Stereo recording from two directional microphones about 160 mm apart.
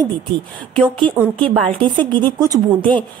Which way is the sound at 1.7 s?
30° right (ahead or behind).